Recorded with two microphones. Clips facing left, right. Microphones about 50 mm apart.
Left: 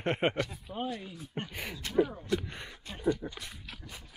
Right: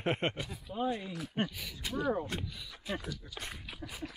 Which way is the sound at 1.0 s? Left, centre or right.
Right.